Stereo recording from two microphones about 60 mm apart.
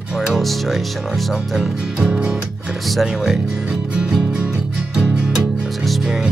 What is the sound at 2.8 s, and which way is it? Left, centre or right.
Music, centre.